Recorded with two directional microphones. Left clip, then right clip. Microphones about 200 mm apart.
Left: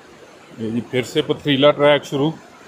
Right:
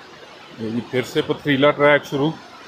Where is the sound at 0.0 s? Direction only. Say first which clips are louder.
Right 3 dB; 50° left (ahead or behind).